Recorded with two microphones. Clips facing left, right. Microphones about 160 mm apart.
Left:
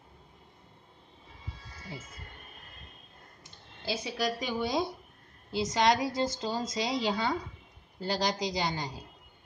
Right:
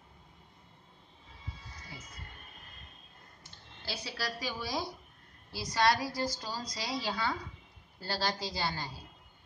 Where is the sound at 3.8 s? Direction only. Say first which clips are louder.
Left 7 dB; 20° left (ahead or behind).